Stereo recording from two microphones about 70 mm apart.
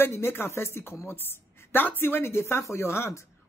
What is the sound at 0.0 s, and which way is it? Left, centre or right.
A woman's voice, left.